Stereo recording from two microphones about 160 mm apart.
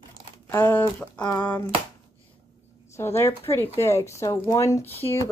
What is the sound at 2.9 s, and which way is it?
Speech, 15° left (ahead or behind).